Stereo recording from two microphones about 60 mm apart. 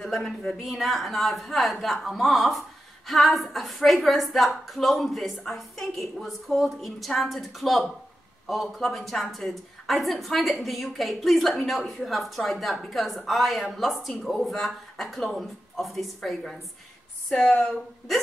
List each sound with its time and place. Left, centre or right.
0.0 s a sound: centre
0.6 s a woman's voice: centre
17.3 s speech: left